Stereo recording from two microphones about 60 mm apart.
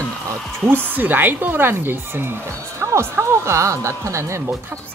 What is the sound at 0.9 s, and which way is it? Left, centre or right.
Speech, right.